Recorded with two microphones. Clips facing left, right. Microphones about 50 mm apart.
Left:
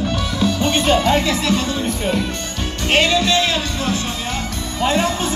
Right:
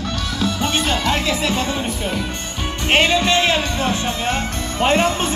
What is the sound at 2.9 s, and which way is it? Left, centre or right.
Music, right.